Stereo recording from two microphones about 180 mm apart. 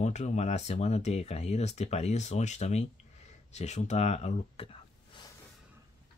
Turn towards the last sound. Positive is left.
turn(degrees=30)  # may be behind; listen again after turning